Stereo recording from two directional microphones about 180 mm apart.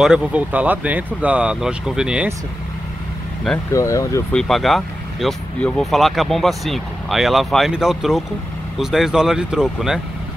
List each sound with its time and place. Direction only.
0.0 s speech: 5° right (ahead or behind)
3.7 s speech: 15° left (ahead or behind)
4.3 s speech: centre (ahead or behind)